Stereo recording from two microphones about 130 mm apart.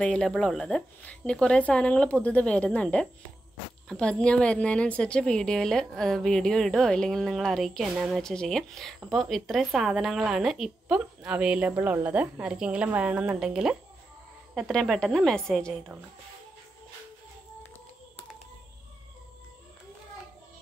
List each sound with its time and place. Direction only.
0.0 s a woman's voice: 5° left (ahead or behind)